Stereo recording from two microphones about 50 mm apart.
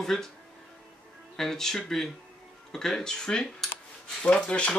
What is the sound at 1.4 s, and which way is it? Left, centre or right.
Speech, centre.